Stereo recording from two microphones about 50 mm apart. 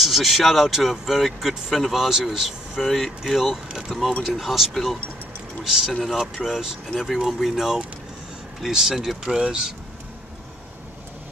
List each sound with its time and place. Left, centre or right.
0.0 s speech: centre
9.3 s speech: centre